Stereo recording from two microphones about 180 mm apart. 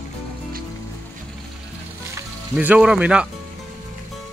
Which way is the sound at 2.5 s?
5° right (ahead or behind).